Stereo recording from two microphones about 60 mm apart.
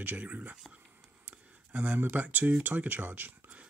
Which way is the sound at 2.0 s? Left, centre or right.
Right.